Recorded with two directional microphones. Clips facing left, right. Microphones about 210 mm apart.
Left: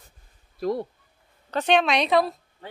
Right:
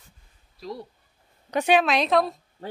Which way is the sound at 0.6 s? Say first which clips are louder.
Left 10 dB; 55° left (ahead or behind).